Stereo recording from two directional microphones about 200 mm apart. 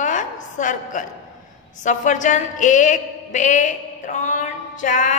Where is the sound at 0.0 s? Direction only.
40° left (ahead or behind).